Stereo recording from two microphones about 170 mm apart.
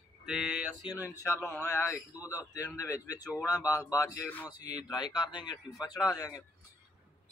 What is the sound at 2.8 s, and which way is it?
A man's voice, 20° left (ahead or behind).